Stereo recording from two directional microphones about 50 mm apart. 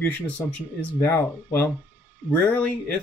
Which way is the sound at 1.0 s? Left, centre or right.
Left.